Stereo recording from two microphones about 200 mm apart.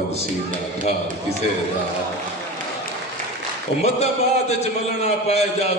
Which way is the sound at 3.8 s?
30° left (ahead or behind).